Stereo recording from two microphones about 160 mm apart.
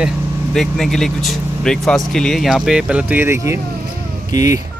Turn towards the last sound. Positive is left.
turn(degrees=-20)  # may be behind; listen again after turning